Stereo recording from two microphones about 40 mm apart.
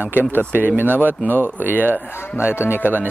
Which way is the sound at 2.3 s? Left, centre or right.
Left.